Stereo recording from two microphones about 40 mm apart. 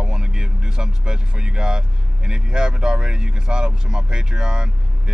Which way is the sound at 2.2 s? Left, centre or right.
Centre.